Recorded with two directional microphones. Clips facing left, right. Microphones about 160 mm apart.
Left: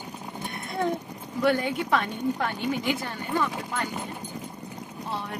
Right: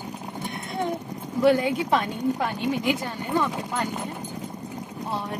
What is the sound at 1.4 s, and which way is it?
A woman's voice, 20° right (ahead or behind).